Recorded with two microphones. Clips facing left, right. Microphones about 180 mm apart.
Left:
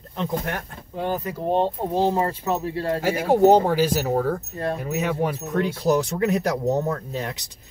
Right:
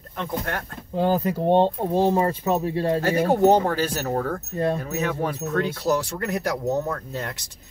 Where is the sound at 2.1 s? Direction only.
15° right (ahead or behind).